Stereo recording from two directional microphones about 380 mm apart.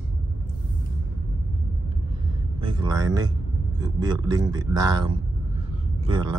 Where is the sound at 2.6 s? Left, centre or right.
Centre.